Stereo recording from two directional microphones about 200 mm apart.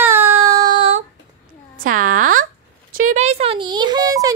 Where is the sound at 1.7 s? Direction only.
45° right (ahead or behind).